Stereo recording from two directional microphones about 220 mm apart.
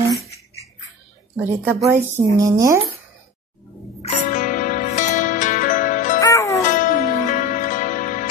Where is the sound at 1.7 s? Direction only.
10° right (ahead or behind).